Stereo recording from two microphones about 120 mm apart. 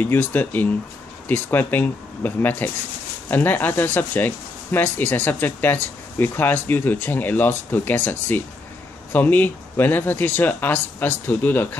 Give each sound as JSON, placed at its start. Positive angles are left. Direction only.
{"t": 0.0, "sound": "speech", "side_deg": 15}